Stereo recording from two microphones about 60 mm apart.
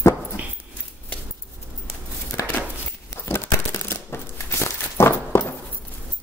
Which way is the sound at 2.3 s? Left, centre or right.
Left.